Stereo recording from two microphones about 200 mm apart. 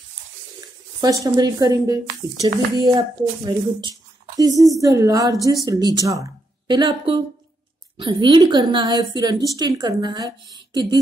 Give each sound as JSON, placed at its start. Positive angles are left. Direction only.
{"t": 1.0, "sound": "a woman's voice", "side_deg": -20}